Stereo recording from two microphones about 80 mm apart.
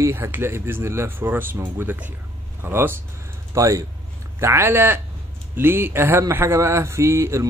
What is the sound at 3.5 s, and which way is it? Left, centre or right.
A man's voice, right.